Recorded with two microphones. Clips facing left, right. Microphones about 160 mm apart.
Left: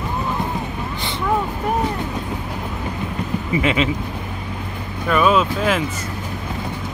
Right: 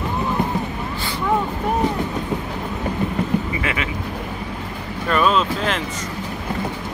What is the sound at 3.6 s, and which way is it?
Speech, 20° left (ahead or behind).